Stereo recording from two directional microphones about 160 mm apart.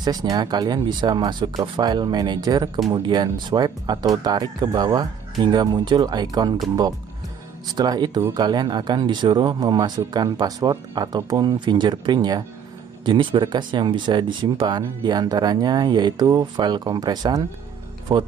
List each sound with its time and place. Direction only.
0.0 s speech: 25° right (ahead or behind)
7.7 s speech: 25° right (ahead or behind)